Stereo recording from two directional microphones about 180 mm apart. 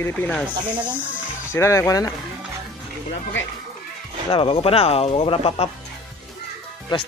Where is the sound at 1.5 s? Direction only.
15° left (ahead or behind).